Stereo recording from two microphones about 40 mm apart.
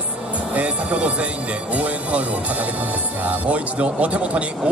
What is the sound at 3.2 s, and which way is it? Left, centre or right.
Speech, right.